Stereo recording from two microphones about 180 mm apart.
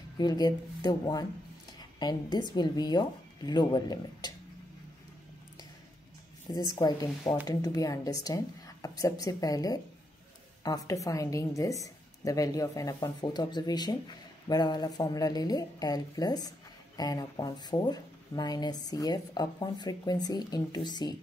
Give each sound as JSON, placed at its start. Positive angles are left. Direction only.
{"t": 0.2, "sound": "a woman's voice", "side_deg": 20}
{"t": 6.7, "sound": "a woman's voice", "side_deg": 20}